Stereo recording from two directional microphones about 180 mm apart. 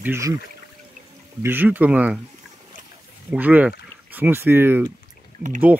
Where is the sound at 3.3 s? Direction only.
10° right (ahead or behind).